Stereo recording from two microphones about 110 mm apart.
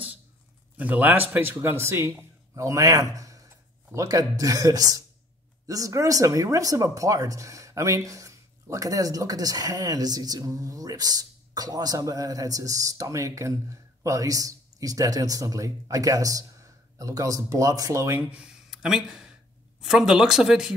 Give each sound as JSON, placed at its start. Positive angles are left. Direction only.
{"t": 0.7, "sound": "a man's voice", "side_deg": -15}
{"t": 18.3, "sound": "speech", "side_deg": -5}